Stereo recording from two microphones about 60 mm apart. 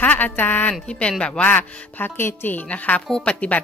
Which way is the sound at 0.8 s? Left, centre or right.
Centre.